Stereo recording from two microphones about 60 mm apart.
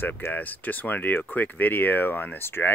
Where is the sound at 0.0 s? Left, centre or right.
Left.